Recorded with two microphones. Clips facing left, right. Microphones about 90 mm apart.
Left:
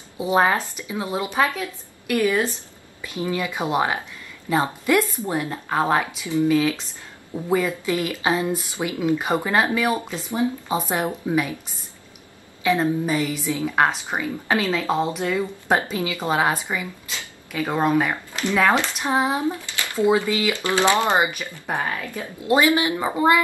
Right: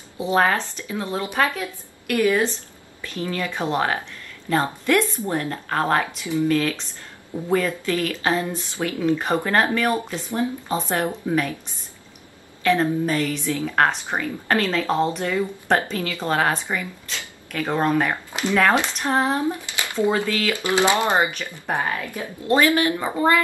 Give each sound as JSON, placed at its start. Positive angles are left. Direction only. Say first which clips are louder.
{"t": 0.2, "sound": "speech", "louder": "left 1 dB", "side_deg": 15}
{"t": 12.6, "sound": "speech", "louder": "right 1 dB", "side_deg": 10}
{"t": 18.5, "sound": "speech", "louder": "even", "side_deg": 15}
{"t": 19.4, "sound": "a sound", "louder": "even", "side_deg": -20}
{"t": 20.1, "sound": "speech", "louder": "left 4 dB", "side_deg": 15}
{"t": 20.5, "sound": "speech", "louder": "right 2 dB", "side_deg": -15}
{"t": 20.9, "sound": "speech", "louder": "even", "side_deg": 20}